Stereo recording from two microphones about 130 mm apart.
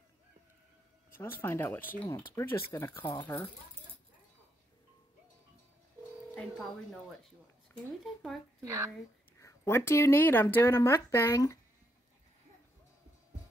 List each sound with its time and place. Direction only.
1.1 s speech: 15° left (ahead or behind)
8.0 s speech: centre (ahead or behind)
8.6 s speech: 25° right (ahead or behind)
9.4 s speech: 20° left (ahead or behind)